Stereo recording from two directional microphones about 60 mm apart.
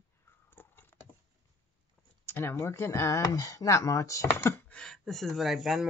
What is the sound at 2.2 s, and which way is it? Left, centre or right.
Speech, left.